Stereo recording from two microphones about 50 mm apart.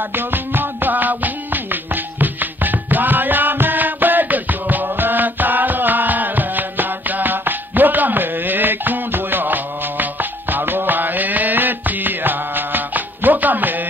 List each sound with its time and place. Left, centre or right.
0.1 s music: right